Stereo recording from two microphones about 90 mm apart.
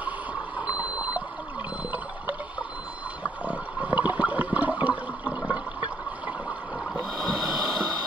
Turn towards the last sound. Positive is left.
turn(degrees=0)  # may be behind; listen again after turning